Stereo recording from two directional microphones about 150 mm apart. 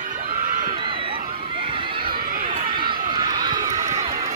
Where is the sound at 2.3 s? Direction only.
65° right (ahead or behind).